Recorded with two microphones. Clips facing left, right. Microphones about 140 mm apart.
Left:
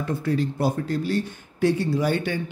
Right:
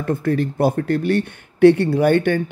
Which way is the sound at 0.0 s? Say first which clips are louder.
Right 5 dB; 55° right (ahead or behind).